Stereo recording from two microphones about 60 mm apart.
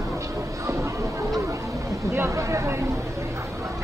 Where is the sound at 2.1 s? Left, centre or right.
Right.